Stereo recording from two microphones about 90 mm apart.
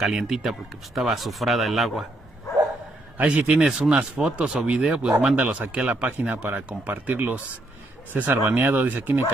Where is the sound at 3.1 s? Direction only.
15° right (ahead or behind).